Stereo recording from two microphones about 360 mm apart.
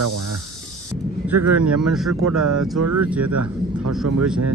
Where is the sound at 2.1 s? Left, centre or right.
Right.